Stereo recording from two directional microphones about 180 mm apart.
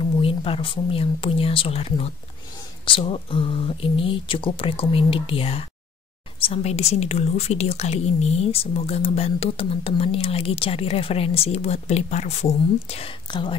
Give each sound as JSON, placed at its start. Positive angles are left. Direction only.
{"t": 0.0, "sound": "speech", "side_deg": 30}